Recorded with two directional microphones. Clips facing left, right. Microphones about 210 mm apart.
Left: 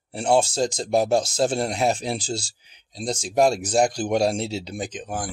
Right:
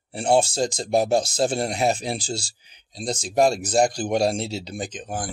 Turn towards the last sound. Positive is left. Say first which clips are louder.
# left 1 dB
turn(degrees=0)  # may be behind; listen again after turning